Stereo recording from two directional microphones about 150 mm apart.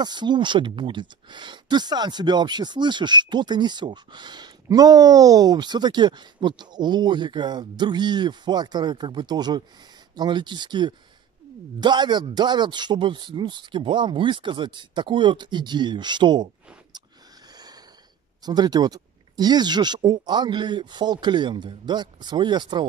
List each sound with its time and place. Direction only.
0.0 s speech: 30° right (ahead or behind)
18.4 s speech: 25° right (ahead or behind)